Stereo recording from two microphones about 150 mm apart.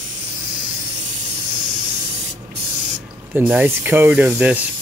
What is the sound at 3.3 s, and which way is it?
Speech, 15° right (ahead or behind).